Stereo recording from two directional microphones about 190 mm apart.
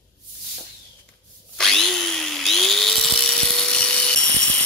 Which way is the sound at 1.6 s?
Centre (ahead or behind).